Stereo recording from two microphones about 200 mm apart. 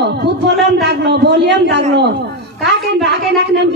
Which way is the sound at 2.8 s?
55° right (ahead or behind).